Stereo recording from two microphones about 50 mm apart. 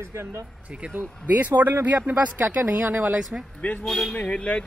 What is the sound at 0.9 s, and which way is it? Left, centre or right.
Speech, right.